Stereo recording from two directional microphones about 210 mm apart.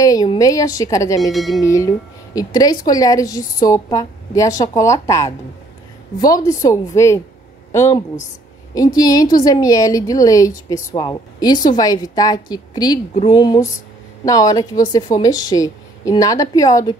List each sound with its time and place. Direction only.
0.0 s a woman's voice: 15° left (ahead or behind)
1.3 s speech: centre (ahead or behind)
1.6 s a woman's voice: 15° left (ahead or behind)